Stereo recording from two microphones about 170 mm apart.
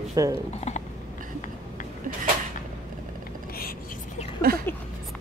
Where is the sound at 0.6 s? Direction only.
40° left (ahead or behind).